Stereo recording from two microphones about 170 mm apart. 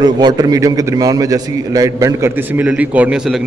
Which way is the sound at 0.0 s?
25° right (ahead or behind).